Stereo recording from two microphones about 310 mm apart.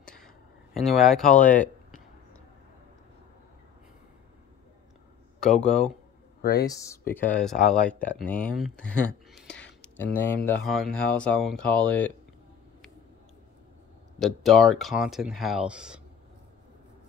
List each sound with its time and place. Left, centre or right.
0.0 s a sound: centre
0.7 s speech: centre
1.4 s speech: left
5.4 s speech: centre
14.2 s speech: centre